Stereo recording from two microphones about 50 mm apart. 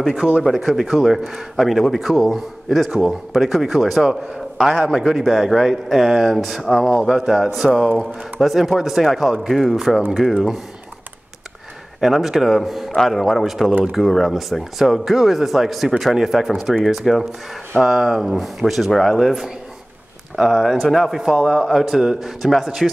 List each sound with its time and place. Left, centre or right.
0.2 s speech: right
0.6 s a man's voice: centre
12.0 s a man's voice: centre